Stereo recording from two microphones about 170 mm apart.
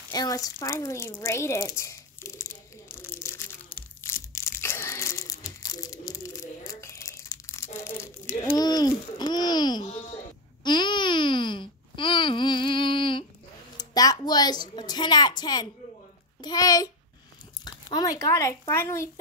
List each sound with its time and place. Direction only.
0.1 s speech: 20° left (ahead or behind)
4.0 s crumpling: 15° left (ahead or behind)
10.6 s a sound: 25° left (ahead or behind)
13.7 s a woman's voice: 25° left (ahead or behind)